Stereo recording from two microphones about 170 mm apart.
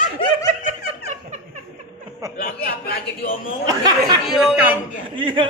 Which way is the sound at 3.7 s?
25° right (ahead or behind).